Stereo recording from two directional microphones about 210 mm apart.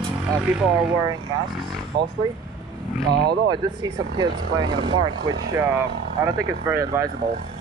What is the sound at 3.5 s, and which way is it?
Speech, 20° right (ahead or behind).